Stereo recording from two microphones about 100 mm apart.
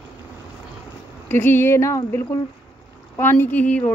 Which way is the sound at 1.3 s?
20° left (ahead or behind).